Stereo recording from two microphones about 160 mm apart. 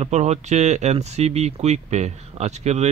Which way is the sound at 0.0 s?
45° right (ahead or behind).